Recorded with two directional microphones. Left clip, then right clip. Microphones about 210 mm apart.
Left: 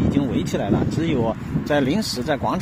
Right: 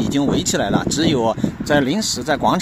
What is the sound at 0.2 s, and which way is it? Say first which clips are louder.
Speech: right 5 dB; 25° right (ahead or behind).